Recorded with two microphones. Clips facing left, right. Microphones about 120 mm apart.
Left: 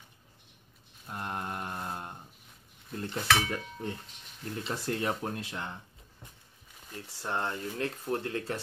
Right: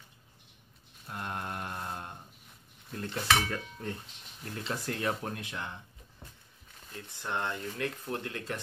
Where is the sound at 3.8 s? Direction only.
20° left (ahead or behind).